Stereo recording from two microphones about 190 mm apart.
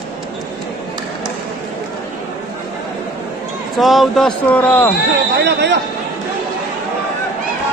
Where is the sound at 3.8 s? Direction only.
Centre (ahead or behind).